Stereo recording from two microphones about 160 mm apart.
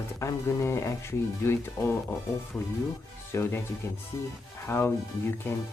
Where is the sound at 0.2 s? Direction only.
20° left (ahead or behind).